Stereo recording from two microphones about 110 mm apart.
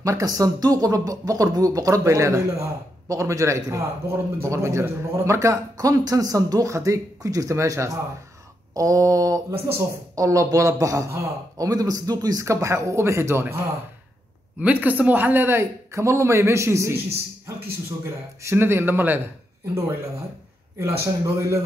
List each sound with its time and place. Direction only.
0.0 s speech: 30° right (ahead or behind)
14.6 s speech: 15° right (ahead or behind)
18.4 s speech: 20° right (ahead or behind)
20.8 s speech: 25° right (ahead or behind)